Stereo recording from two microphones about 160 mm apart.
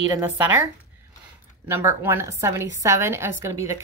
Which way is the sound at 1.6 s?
15° right (ahead or behind).